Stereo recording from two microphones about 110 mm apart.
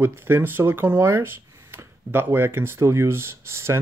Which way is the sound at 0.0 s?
20° right (ahead or behind).